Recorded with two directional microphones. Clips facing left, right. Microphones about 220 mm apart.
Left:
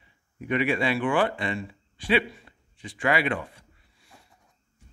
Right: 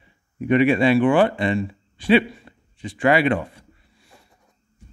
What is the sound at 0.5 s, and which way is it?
A man's voice, 25° right (ahead or behind).